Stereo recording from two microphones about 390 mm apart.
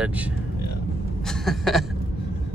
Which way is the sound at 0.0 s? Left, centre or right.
Centre.